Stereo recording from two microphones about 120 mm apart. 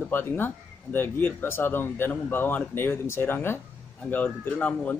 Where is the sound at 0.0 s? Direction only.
15° left (ahead or behind).